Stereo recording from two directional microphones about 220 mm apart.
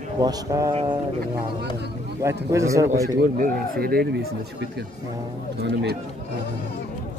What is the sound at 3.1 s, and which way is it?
Speech, 40° right (ahead or behind).